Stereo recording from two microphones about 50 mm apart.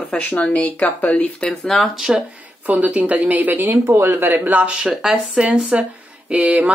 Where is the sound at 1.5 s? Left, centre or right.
Centre.